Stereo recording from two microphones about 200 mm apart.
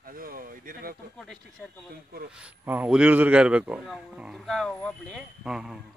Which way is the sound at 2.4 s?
10° right (ahead or behind).